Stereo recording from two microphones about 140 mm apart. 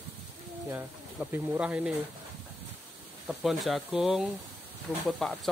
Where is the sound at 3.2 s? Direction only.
Centre (ahead or behind).